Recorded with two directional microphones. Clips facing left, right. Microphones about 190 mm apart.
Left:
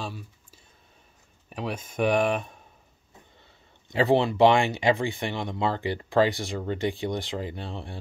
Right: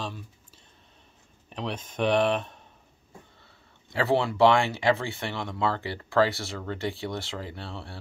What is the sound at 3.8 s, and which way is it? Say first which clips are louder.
Speech: left 3 dB; 20° left (ahead or behind).